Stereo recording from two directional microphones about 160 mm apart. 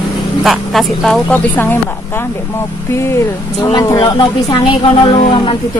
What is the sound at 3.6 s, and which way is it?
Speech, 30° left (ahead or behind).